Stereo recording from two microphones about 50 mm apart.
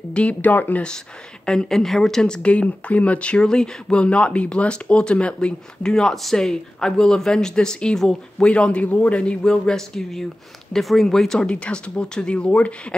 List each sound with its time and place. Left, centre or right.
0.1 s speech: left
0.8 s a man's voice: centre
11.4 s a man's voice: left